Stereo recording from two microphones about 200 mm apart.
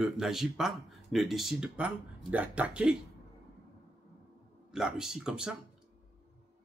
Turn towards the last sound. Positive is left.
turn(degrees=-5)  # may be behind; listen again after turning